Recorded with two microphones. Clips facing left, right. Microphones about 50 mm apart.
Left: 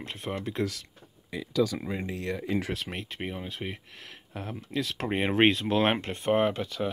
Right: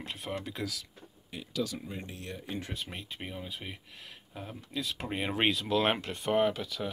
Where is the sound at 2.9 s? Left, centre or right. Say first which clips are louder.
Left 6 dB; left.